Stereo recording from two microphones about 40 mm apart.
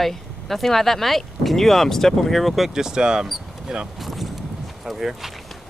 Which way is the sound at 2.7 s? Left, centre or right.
Centre.